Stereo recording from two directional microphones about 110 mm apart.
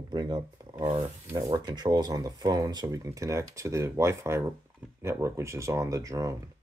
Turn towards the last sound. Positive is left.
turn(degrees=-30)  # may be behind; listen again after turning